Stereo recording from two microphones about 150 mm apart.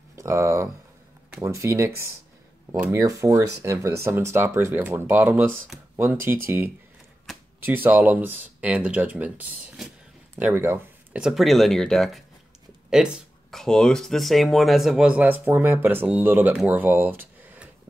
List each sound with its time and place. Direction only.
0.1 s speech: 20° right (ahead or behind)
11.2 s speech: centre (ahead or behind)